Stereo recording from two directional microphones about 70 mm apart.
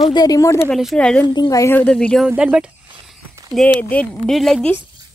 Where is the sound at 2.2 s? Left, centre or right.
Centre.